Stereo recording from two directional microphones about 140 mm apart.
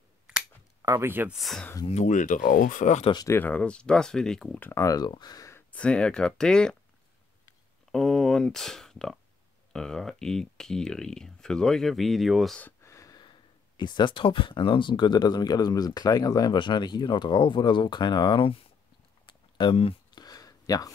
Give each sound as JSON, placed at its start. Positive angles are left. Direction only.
{"t": 0.8, "sound": "speech", "side_deg": -20}
{"t": 1.3, "sound": "speech", "side_deg": 0}
{"t": 1.9, "sound": "speech", "side_deg": 55}
{"t": 3.2, "sound": "speech", "side_deg": 15}
{"t": 4.6, "sound": "speech", "side_deg": 20}
{"t": 5.7, "sound": "speech", "side_deg": 10}
{"t": 7.9, "sound": "speech", "side_deg": 0}
{"t": 12.6, "sound": "speech", "side_deg": 20}
{"t": 19.2, "sound": "a sound", "side_deg": 35}
{"t": 20.2, "sound": "a sound", "side_deg": 25}